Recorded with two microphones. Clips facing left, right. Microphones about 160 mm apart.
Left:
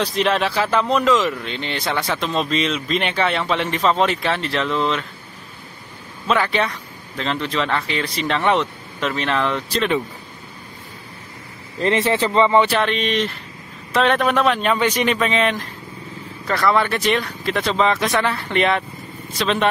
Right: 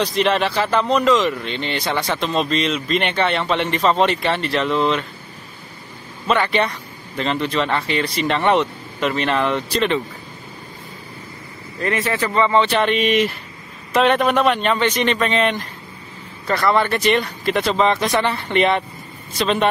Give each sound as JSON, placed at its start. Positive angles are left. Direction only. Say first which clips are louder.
{"t": 0.0, "sound": "speech", "louder": "right 1 dB", "side_deg": 0}
{"t": 6.2, "sound": "speech", "louder": "right 1 dB", "side_deg": 0}
{"t": 11.8, "sound": "speech", "louder": "left 3 dB", "side_deg": 25}
{"t": 12.7, "sound": "speech", "louder": "right 3 dB", "side_deg": -5}